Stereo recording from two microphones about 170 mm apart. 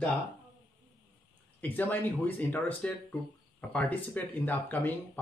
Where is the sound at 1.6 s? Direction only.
10° left (ahead or behind).